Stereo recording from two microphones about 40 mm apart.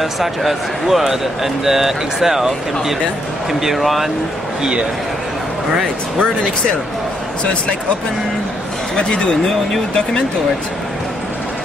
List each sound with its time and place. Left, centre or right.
0.0 s speech: centre
3.6 s speech: centre
8.9 s speech: left